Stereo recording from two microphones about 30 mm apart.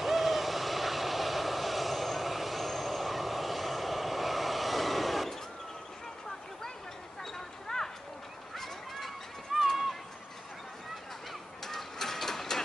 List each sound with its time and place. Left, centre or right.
0.0 s vehicle: centre
7.3 s a sound: centre
8.5 s goose: centre
9.5 s run: centre
11.6 s printer: centre